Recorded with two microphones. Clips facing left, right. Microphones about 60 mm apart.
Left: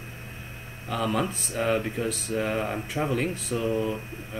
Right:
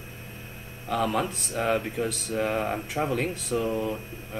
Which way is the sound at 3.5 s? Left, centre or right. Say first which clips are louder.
Even; right.